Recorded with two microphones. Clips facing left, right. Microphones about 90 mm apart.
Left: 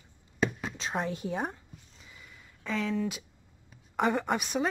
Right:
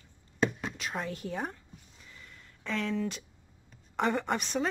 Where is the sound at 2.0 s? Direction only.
10° left (ahead or behind).